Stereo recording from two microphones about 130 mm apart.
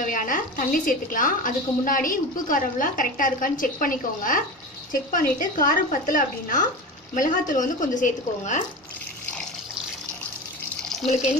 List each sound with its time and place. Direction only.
0.0 s a woman's voice: 90° left